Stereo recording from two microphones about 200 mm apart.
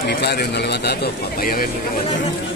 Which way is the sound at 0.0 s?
55° left (ahead or behind).